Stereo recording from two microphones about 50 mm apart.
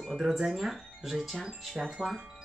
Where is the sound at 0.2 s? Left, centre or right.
Centre.